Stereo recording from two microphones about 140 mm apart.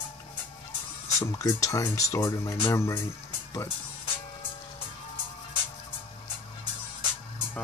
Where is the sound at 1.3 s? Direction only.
25° left (ahead or behind).